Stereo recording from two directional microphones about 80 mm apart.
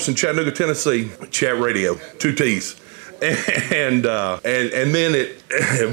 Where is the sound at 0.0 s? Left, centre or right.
Right.